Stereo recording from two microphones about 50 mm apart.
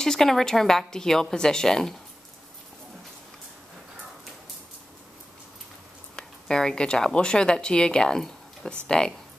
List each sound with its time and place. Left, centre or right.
0.0 s speech: centre
6.4 s speech: centre